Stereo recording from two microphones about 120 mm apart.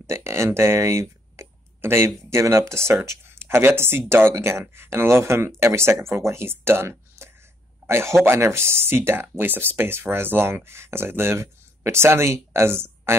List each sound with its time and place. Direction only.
0.0 s speech: 25° right (ahead or behind)